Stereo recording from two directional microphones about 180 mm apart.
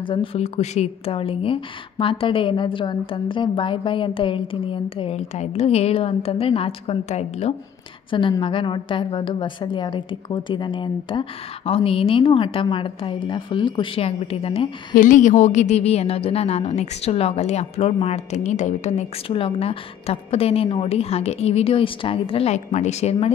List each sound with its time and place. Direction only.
0.0 s speech: 30° left (ahead or behind)
15.0 s a woman's voice: 45° left (ahead or behind)